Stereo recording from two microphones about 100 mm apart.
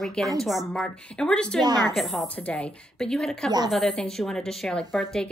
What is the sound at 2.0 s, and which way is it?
Speech, centre (ahead or behind).